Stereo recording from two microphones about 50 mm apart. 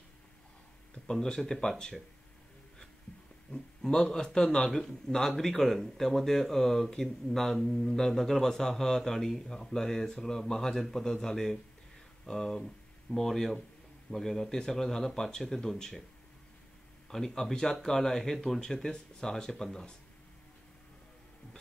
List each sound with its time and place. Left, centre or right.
1.1 s speech: centre
3.5 s speech: left
3.8 s speech: centre
17.1 s speech: centre